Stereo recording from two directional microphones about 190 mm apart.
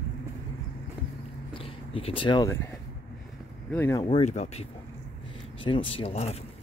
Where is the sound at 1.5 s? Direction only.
30° left (ahead or behind).